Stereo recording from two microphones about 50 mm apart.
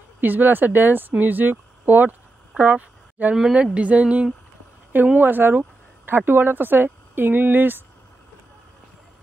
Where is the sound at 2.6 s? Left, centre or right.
Right.